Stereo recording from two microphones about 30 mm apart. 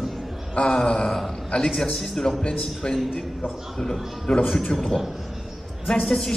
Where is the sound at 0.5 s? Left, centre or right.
Left.